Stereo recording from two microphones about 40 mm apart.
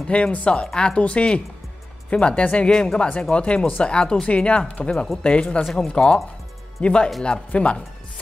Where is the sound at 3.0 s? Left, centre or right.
Left.